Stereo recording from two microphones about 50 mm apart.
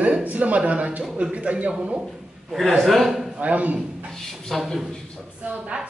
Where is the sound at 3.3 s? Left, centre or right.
Right.